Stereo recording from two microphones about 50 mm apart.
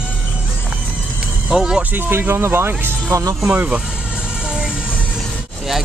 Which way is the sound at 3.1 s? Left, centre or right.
Right.